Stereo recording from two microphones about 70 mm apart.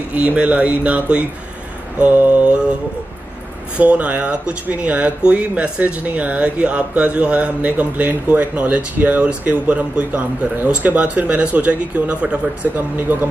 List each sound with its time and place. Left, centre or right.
0.1 s speech: centre
2.0 s mantra: centre
3.7 s speech: centre
12.7 s speech: right